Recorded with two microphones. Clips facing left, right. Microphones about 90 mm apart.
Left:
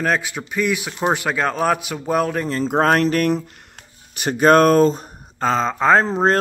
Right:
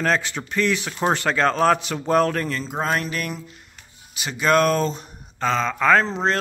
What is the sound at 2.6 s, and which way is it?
Speech, 60° left (ahead or behind).